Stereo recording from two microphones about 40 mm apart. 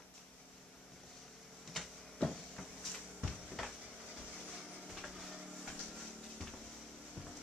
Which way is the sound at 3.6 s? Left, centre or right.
Centre.